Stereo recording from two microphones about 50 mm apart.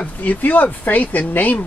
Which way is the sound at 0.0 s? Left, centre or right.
Left.